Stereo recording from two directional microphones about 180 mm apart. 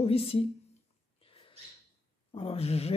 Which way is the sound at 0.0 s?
35° left (ahead or behind).